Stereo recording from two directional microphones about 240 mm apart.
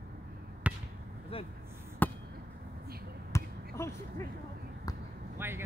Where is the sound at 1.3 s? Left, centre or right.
Left.